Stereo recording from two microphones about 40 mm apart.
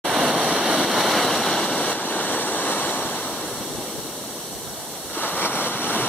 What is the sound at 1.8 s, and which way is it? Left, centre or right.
Waterfall, left.